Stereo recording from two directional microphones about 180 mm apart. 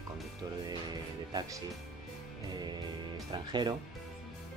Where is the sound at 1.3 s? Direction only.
25° right (ahead or behind).